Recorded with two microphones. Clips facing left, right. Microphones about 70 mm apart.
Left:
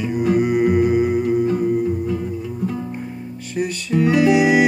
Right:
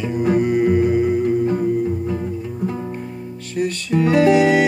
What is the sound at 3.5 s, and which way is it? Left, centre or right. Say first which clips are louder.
Music: right 1 dB; centre.